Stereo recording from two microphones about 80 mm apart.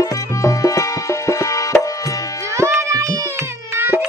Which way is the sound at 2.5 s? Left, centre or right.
Right.